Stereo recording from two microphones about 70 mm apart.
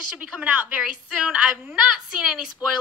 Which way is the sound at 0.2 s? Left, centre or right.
Centre.